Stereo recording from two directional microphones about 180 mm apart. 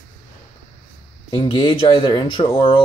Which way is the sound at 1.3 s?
25° left (ahead or behind).